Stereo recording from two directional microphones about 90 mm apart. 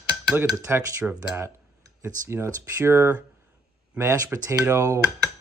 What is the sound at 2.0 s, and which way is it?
Speech, 30° right (ahead or behind).